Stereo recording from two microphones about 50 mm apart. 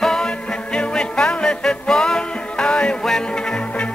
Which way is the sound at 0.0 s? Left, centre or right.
Centre.